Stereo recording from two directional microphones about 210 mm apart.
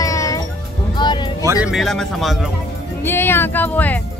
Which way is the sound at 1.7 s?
Centre (ahead or behind).